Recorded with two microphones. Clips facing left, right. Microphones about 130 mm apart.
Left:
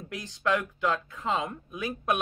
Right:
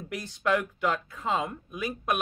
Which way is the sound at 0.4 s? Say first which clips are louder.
Right 1 dB; 15° right (ahead or behind).